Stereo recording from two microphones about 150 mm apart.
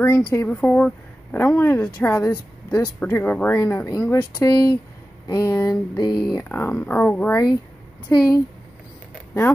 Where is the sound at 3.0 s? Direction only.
10° left (ahead or behind).